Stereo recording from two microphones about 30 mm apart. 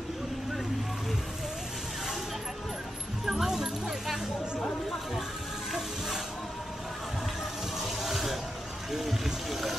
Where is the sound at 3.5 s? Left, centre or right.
Centre.